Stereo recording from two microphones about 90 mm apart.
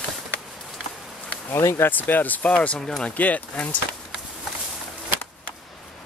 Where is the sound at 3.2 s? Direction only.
15° left (ahead or behind).